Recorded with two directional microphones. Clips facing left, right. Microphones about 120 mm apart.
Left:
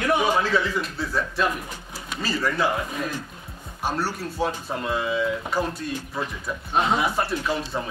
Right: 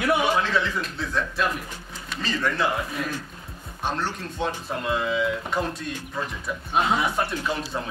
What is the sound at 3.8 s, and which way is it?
Speech, 10° left (ahead or behind).